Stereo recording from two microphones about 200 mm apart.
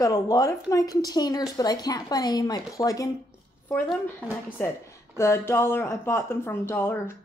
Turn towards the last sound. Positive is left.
turn(degrees=10)  # may be behind; listen again after turning